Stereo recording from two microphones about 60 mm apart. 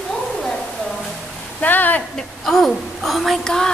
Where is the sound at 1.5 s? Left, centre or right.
Left.